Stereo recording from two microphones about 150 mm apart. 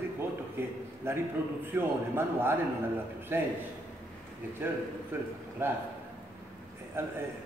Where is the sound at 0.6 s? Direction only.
15° right (ahead or behind).